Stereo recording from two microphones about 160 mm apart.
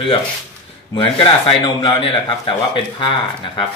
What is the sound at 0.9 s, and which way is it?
Speech, 30° left (ahead or behind).